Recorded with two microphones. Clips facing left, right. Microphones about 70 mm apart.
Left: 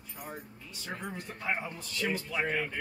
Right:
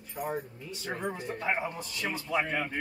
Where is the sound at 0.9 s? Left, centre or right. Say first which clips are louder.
Right 5 dB; right.